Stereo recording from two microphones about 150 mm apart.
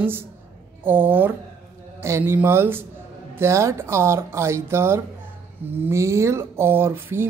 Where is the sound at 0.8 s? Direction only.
10° right (ahead or behind).